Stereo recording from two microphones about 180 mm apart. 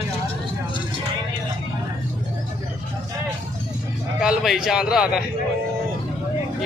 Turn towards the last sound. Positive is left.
turn(degrees=-5)  # may be behind; listen again after turning